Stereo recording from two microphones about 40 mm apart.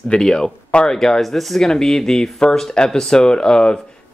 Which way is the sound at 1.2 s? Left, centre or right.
Centre.